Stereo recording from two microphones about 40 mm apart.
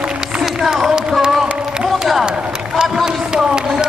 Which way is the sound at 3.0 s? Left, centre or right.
Centre.